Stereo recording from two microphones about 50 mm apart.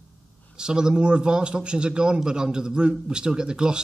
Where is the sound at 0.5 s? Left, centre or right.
Centre.